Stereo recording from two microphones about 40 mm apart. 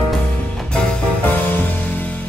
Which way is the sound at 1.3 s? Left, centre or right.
Left.